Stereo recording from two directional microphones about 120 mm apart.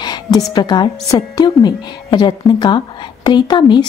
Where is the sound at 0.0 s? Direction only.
35° left (ahead or behind).